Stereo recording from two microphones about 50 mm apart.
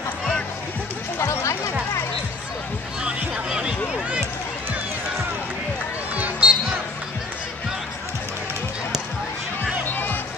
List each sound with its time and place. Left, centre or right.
1.1 s music: left
3.0 s music: centre
6.1 s a sound: right
9.6 s music: left